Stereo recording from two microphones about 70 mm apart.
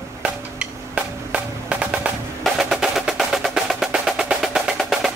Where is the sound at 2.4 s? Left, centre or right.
Centre.